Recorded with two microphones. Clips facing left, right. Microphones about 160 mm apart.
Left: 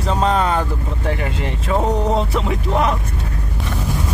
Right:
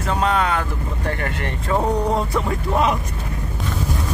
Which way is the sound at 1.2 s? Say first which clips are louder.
Left 2 dB; 15° left (ahead or behind).